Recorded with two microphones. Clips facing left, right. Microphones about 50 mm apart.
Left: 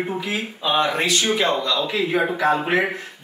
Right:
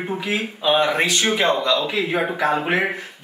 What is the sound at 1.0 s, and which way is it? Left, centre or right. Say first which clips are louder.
Speech: right 1 dB; right.